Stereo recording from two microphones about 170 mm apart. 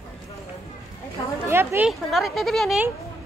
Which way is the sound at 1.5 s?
15° right (ahead or behind).